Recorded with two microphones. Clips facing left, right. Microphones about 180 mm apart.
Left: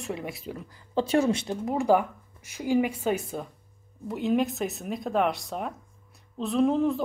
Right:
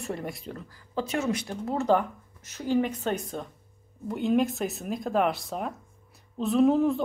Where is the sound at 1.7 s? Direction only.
10° left (ahead or behind).